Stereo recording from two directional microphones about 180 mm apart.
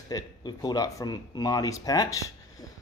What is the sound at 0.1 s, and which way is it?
Speech, 25° left (ahead or behind).